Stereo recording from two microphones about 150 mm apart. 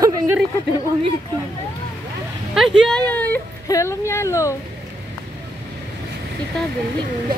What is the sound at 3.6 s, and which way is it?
Speech, 20° left (ahead or behind).